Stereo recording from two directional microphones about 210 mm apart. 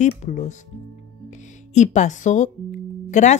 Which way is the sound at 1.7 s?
35° left (ahead or behind).